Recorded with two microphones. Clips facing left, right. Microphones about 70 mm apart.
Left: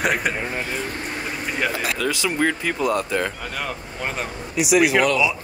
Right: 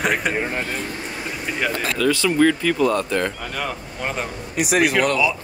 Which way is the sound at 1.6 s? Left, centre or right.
Centre.